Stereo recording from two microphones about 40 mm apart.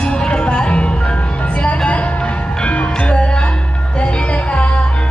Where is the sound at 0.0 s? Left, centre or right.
Left.